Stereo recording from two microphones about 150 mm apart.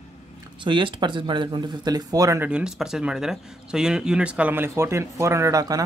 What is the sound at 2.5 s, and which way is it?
Speech, 5° right (ahead or behind).